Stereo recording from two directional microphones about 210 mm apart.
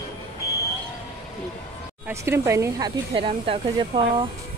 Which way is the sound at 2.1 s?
10° right (ahead or behind).